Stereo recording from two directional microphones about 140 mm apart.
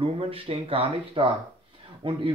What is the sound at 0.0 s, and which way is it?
Speech, 40° right (ahead or behind).